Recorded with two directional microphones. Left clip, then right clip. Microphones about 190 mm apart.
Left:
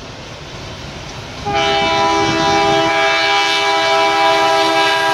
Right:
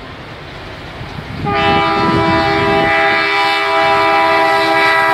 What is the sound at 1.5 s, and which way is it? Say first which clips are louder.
Train: right 2 dB; 35° left (ahead or behind).